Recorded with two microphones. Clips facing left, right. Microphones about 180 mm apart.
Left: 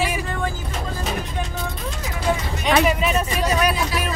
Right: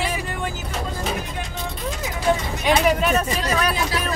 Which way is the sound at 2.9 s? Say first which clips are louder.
Right 1 dB; centre (ahead or behind).